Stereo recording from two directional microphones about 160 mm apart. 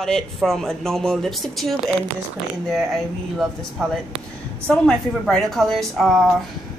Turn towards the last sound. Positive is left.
turn(degrees=0)  # may be behind; listen again after turning